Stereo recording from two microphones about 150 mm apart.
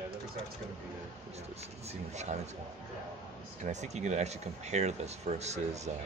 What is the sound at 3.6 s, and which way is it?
Speech, 50° right (ahead or behind).